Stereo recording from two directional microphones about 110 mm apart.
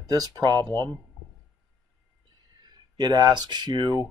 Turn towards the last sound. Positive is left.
turn(degrees=-40)  # may be behind; listen again after turning